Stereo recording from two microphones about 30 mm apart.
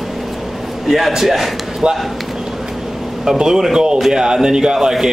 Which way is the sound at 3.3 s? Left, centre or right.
Right.